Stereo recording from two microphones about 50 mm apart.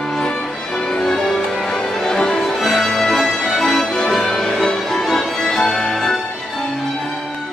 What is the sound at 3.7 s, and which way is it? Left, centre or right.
Music, centre.